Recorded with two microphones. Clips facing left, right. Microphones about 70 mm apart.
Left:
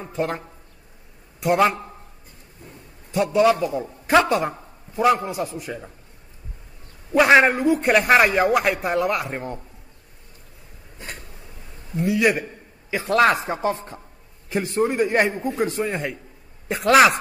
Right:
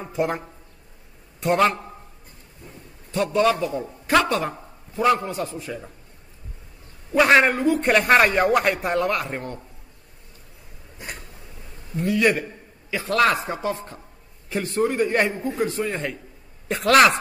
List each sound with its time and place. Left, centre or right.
0.0 s a man's voice: centre
1.4 s a man's voice: centre
3.1 s a man's voice: centre
5.5 s a man's voice: centre
7.1 s a man's voice: centre
11.0 s a sound: centre
11.9 s a man's voice: centre
12.9 s a man's voice: left
15.9 s a man's voice: centre